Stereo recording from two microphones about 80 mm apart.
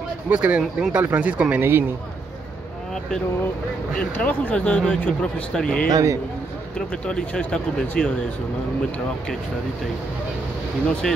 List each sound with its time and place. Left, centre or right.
0.3 s speech: centre
1.0 s speech: centre
1.6 s speech: right
4.2 s speech: centre
5.9 s speech: right
7.1 s speech: centre
10.9 s speech: centre